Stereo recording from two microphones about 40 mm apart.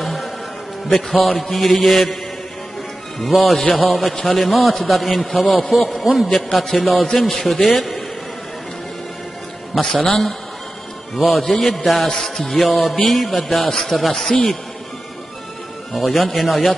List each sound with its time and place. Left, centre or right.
0.0 s music: centre
0.9 s a man's voice: centre
3.3 s a man's voice: centre
9.8 s a man's voice: centre
13.7 s a man's voice: centre
14.3 s a man's voice: left
15.9 s a man's voice: centre